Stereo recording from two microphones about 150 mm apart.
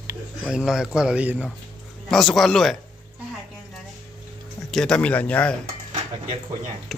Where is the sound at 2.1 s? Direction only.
Centre (ahead or behind).